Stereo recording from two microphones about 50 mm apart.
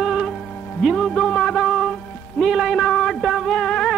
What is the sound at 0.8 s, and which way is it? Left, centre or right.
Music, centre.